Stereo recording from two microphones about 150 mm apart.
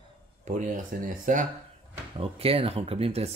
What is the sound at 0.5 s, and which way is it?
Speech, 60° right (ahead or behind).